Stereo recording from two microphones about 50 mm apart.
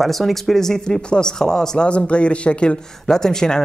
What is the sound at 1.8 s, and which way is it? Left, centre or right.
A man's voice, left.